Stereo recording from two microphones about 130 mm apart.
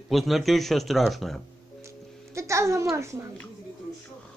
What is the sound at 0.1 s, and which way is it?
Speech, centre (ahead or behind).